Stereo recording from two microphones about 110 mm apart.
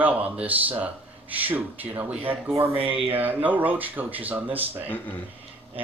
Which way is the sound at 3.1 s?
15° right (ahead or behind).